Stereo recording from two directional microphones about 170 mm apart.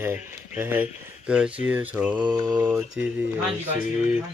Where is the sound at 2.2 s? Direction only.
25° right (ahead or behind).